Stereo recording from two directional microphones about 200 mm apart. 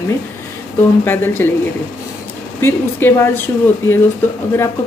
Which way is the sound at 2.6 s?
10° left (ahead or behind).